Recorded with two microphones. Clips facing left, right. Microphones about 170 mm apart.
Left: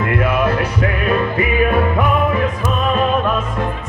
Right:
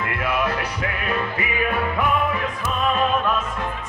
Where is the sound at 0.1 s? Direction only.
50° left (ahead or behind).